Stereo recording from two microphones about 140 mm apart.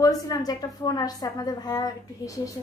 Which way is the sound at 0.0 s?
25° left (ahead or behind).